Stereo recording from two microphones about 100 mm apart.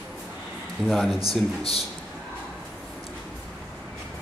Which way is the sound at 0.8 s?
5° right (ahead or behind).